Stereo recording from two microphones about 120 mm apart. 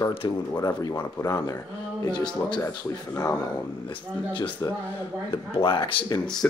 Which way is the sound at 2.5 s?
25° left (ahead or behind).